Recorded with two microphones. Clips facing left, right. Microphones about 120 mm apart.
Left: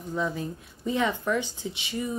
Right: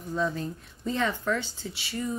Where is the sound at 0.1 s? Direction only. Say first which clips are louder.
Right 1 dB; 15° left (ahead or behind).